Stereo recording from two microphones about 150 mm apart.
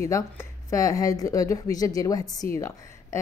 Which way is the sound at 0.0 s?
20° left (ahead or behind).